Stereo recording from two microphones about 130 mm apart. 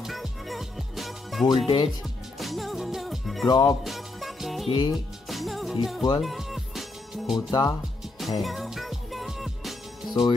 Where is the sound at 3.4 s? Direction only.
35° left (ahead or behind).